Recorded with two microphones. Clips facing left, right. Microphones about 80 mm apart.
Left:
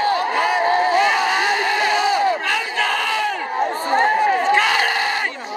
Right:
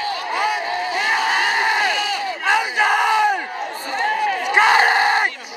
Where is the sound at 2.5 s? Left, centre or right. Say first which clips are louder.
Right 4 dB; centre.